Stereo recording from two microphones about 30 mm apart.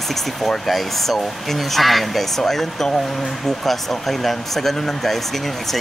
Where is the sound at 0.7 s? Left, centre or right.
Centre.